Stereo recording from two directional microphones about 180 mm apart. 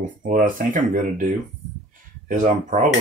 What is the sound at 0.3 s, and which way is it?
Speech, 50° right (ahead or behind).